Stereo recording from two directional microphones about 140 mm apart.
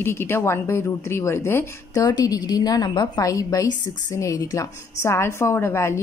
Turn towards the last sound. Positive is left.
turn(degrees=20)  # may be behind; listen again after turning